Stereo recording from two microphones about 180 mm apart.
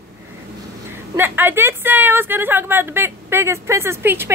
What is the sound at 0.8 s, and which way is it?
A woman's voice, 10° right (ahead or behind).